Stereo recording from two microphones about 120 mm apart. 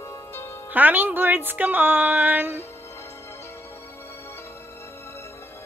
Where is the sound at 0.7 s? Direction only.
15° right (ahead or behind).